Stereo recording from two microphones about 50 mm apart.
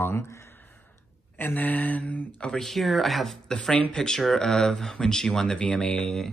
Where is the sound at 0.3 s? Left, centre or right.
Left.